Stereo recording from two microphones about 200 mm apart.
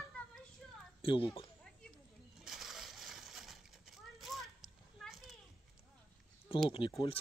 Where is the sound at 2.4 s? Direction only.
Centre (ahead or behind).